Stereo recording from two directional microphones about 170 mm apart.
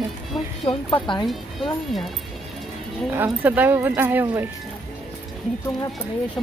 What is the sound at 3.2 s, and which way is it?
Speech, 10° right (ahead or behind).